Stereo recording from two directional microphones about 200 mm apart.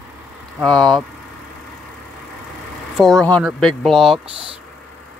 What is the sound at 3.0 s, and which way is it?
Speech, centre (ahead or behind).